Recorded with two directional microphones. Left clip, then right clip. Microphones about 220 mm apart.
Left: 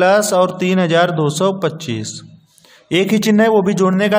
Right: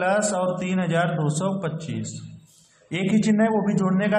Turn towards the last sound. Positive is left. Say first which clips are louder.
# left 9 dB
turn(degrees=50)  # may be behind; listen again after turning